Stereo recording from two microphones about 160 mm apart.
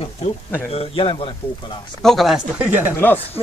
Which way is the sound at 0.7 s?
35° left (ahead or behind).